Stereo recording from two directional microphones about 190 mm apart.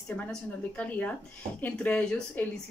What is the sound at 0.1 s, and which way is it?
A woman's voice, 5° left (ahead or behind).